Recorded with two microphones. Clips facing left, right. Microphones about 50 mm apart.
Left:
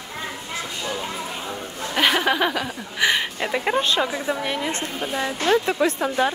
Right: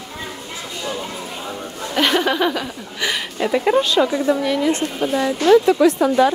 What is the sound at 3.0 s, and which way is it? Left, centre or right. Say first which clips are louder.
Speech: even; left.